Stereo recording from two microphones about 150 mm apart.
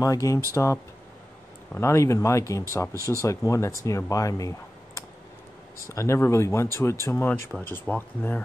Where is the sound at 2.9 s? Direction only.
20° right (ahead or behind).